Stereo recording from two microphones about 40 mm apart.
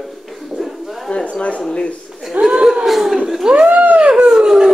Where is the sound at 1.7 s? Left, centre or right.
Left.